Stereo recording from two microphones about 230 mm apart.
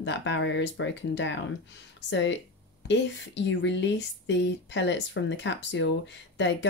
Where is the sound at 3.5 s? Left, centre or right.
Left.